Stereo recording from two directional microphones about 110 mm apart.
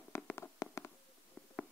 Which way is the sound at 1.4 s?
5° left (ahead or behind).